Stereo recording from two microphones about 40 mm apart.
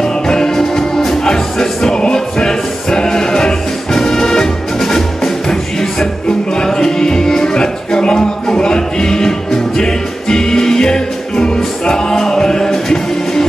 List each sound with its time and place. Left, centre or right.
0.0 s music: centre